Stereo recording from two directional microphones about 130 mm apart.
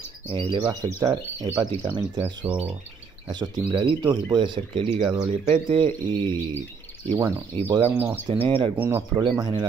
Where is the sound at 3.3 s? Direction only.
35° right (ahead or behind).